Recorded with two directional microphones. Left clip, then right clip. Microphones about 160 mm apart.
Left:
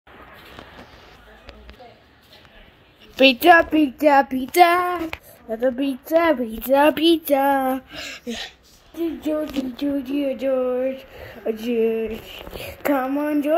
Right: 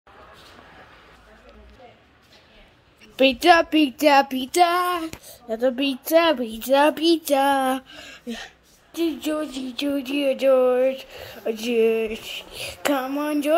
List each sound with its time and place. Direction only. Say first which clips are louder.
3.2 s child singing: left 3 dB; 5° left (ahead or behind)
4.0 s child singing: left 1 dB; 15° right (ahead or behind)
4.4 s child singing: left 4 dB; 15° left (ahead or behind)
5.6 s a sound: even; 25° right (ahead or behind)
6.2 s child singing: left 1 dB; 10° left (ahead or behind)
7.9 s speech: left 5 dB; 15° left (ahead or behind)
9.8 s a sound: right 2 dB; 20° right (ahead or behind)
12.6 s child singing: left 2 dB; centre (ahead or behind)